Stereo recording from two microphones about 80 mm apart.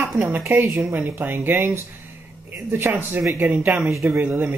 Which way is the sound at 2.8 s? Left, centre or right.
Right.